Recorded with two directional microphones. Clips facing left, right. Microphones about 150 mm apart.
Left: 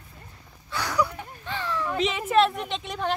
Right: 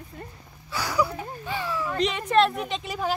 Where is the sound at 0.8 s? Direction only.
5° right (ahead or behind).